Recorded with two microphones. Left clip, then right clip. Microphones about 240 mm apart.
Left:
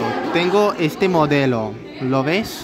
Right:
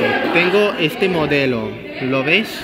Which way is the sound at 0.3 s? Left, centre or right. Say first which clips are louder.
Left 1 dB; centre.